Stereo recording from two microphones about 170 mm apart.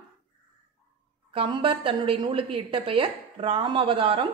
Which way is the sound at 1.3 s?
30° right (ahead or behind).